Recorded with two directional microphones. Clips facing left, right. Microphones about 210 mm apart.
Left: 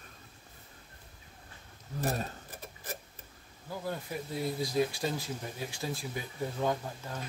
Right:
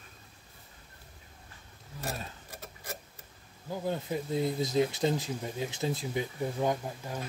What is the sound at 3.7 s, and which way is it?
Speech, 20° right (ahead or behind).